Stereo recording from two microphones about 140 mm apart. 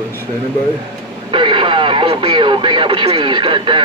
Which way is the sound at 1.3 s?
35° right (ahead or behind).